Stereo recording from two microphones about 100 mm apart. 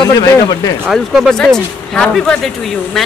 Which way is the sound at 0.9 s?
Centre (ahead or behind).